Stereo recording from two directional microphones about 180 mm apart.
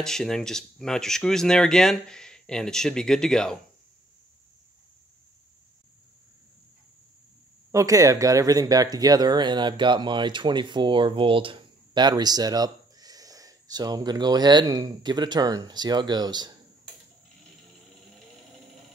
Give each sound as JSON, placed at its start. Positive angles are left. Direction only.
{"t": 0.0, "sound": "speech", "side_deg": 5}
{"t": 7.7, "sound": "speech", "side_deg": -20}